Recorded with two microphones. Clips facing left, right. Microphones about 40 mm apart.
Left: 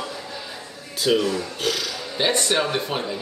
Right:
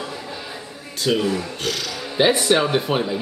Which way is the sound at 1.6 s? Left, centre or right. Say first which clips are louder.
Even; centre.